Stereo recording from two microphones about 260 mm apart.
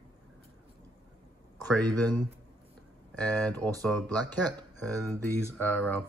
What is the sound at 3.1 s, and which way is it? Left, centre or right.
Speech, centre.